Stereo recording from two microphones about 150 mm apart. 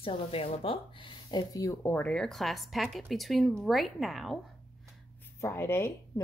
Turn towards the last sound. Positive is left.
turn(degrees=15)  # may be behind; listen again after turning